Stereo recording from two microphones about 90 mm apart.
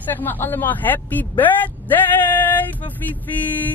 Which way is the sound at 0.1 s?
20° left (ahead or behind).